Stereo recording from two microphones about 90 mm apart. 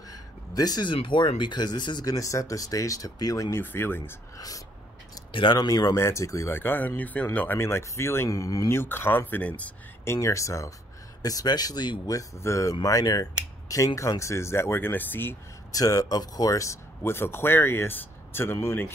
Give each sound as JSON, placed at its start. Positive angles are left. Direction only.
{"t": 0.6, "sound": "speech", "side_deg": 50}
{"t": 0.9, "sound": "speech", "side_deg": 70}
{"t": 3.5, "sound": "speech", "side_deg": 25}
{"t": 5.3, "sound": "speech", "side_deg": 70}
{"t": 5.6, "sound": "speech", "side_deg": 45}
{"t": 6.6, "sound": "speech", "side_deg": 20}
{"t": 10.0, "sound": "speech", "side_deg": 35}
{"t": 11.2, "sound": "speech", "side_deg": 45}
{"t": 12.1, "sound": "speech", "side_deg": 35}
{"t": 12.8, "sound": "speech", "side_deg": 45}
{"t": 15.7, "sound": "speech", "side_deg": 40}
{"t": 17.0, "sound": "speech", "side_deg": 25}